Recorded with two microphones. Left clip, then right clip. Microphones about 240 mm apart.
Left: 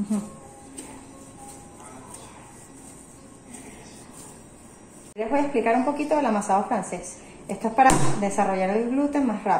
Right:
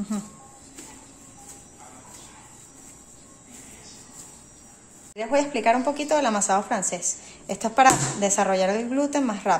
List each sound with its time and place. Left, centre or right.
5.1 s speech: right